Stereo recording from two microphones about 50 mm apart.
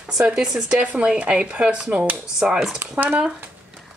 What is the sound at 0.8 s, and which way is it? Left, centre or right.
Speech, right.